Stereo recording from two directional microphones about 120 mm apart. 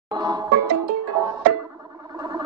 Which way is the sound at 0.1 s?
35° right (ahead or behind).